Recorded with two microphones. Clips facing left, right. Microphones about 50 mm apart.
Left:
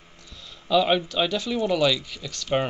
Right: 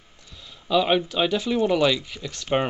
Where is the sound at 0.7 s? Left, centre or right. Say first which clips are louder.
Even; centre.